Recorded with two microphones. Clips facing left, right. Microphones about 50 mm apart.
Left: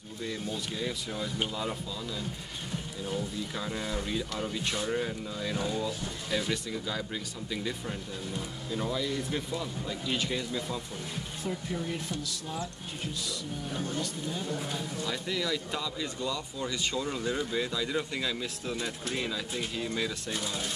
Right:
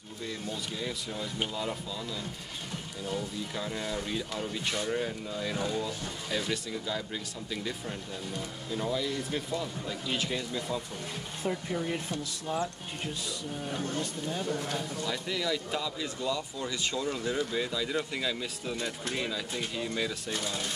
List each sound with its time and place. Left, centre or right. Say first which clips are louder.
0.3 s speech: left 1 dB; centre
3.1 s speech: even; centre
11.4 s speech: right 3 dB; right
15.0 s speech: even; centre